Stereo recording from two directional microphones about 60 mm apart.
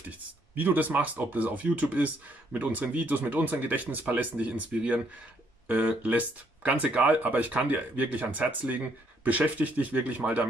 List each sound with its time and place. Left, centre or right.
0.6 s speech: right